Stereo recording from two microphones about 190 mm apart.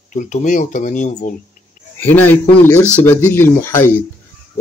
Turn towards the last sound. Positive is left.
turn(degrees=10)  # may be behind; listen again after turning